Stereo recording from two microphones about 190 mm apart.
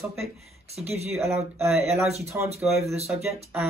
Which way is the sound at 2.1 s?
35° right (ahead or behind).